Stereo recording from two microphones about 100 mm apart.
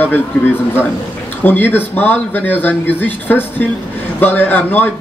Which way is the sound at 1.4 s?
20° left (ahead or behind).